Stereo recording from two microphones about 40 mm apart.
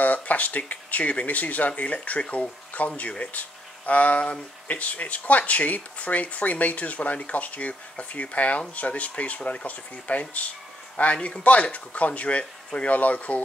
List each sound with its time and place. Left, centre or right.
0.0 s speech: left
2.2 s speech: left
3.0 s speech: left
11.1 s speech: left
11.4 s speech: left